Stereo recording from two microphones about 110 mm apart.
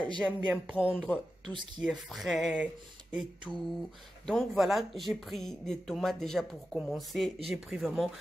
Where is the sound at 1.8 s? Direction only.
5° right (ahead or behind).